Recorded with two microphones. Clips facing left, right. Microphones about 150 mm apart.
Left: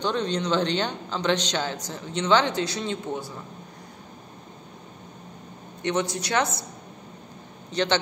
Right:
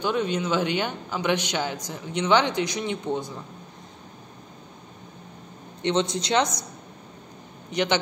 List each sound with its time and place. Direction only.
0.0 s a man's voice: 10° right (ahead or behind)
5.8 s speech: 20° right (ahead or behind)
7.7 s a man's voice: 15° right (ahead or behind)